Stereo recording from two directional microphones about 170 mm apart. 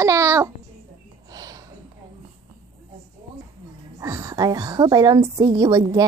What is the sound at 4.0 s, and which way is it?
A woman's voice, 20° right (ahead or behind).